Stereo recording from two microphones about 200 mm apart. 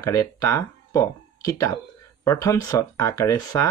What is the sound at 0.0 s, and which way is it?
Speech, 15° left (ahead or behind).